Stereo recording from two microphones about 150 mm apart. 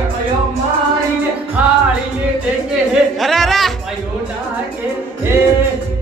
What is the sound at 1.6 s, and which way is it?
Music, 10° right (ahead or behind).